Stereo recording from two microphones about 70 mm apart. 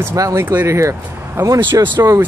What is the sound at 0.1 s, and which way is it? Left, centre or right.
Speech, right.